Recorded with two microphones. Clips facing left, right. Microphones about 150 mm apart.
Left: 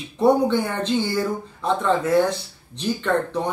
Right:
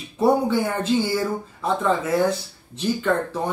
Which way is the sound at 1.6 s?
5° right (ahead or behind).